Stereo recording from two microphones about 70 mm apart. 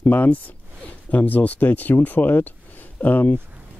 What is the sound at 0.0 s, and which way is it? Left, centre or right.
Speech, left.